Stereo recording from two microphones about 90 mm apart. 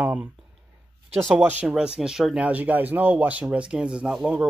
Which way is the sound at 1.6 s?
5° right (ahead or behind).